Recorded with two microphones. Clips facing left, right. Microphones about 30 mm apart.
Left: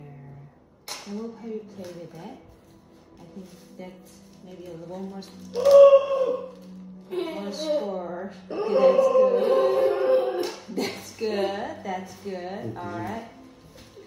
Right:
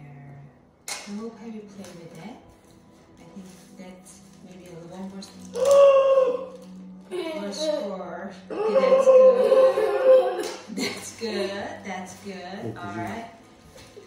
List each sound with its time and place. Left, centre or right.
0.8 s a woman's voice: right
3.4 s a woman's voice: right
5.5 s music: left
6.2 s a sound: right
7.2 s a woman's voice: right
10.5 s a woman's voice: right